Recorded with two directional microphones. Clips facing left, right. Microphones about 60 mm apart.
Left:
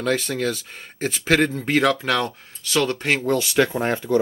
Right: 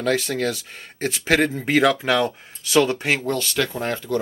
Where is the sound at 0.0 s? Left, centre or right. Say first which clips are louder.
Right 1 dB; centre.